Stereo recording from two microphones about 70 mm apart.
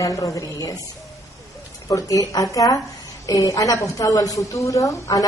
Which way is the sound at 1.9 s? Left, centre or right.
Left.